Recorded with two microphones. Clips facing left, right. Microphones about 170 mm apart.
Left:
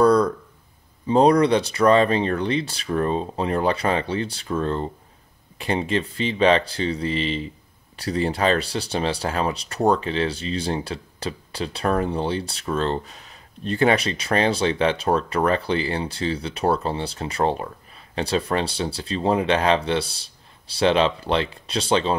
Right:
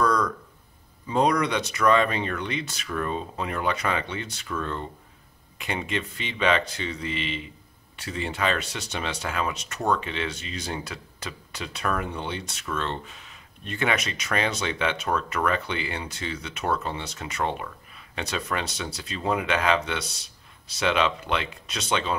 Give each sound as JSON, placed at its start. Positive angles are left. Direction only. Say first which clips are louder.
{"t": 0.0, "sound": "speech", "louder": "left 7 dB", "side_deg": 30}